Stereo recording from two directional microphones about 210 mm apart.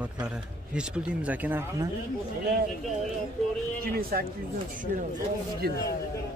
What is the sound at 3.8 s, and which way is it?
Speech, 45° right (ahead or behind).